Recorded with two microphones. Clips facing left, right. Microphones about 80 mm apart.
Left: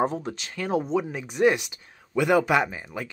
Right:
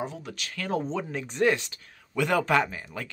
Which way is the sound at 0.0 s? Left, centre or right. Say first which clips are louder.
Left 9 dB; left.